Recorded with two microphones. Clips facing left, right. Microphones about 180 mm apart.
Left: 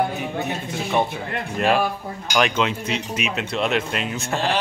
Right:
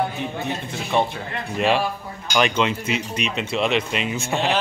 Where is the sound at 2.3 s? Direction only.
Centre (ahead or behind).